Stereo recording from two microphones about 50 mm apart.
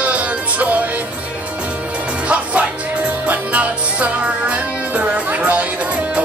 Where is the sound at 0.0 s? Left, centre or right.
Right.